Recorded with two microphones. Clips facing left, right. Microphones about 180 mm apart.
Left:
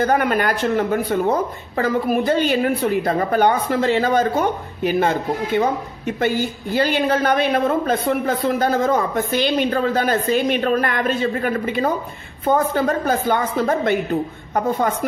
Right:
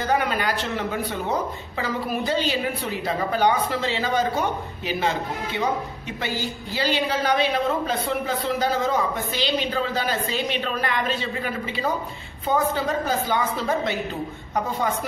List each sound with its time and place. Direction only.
0.0 s a woman's voice: 50° left (ahead or behind)